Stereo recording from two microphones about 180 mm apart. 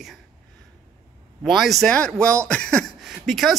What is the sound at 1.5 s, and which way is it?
Speech, centre (ahead or behind).